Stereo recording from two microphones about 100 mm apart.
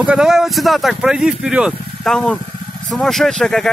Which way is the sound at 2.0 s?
5° left (ahead or behind).